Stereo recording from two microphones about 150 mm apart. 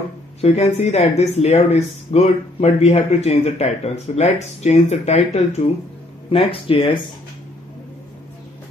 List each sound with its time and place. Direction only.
0.4 s speech: 45° left (ahead or behind)